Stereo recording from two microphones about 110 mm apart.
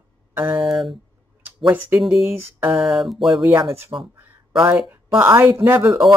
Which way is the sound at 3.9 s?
30° right (ahead or behind).